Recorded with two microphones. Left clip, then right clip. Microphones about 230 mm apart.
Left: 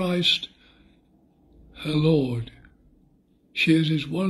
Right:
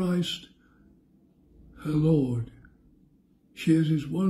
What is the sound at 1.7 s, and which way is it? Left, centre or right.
Speech, centre.